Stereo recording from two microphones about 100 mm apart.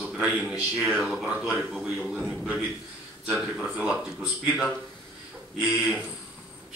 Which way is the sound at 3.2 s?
10° right (ahead or behind).